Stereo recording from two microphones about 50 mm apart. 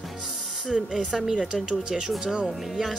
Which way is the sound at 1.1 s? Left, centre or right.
Centre.